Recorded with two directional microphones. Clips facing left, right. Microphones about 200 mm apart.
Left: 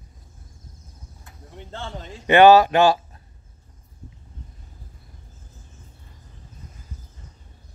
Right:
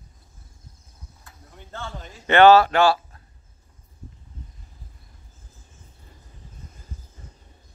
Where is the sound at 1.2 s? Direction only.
25° left (ahead or behind).